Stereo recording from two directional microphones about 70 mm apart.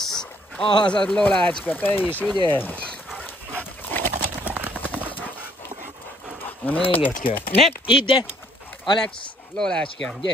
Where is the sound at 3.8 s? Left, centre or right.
Left.